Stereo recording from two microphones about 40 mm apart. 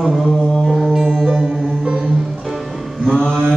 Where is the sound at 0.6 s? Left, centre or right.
Centre.